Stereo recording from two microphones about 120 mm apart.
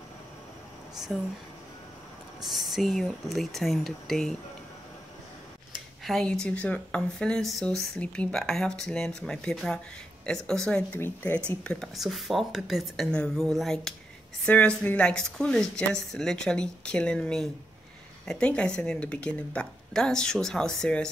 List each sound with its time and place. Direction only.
0.9 s speech: 5° right (ahead or behind)
2.4 s speech: centre (ahead or behind)
6.0 s speech: 5° left (ahead or behind)